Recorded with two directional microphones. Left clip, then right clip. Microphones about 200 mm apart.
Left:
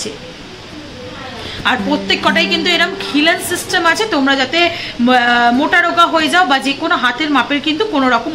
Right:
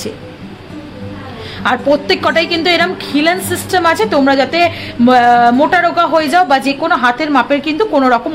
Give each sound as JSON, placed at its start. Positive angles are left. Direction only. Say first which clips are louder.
{"t": 1.6, "sound": "a woman's voice", "louder": "right 3 dB", "side_deg": -60}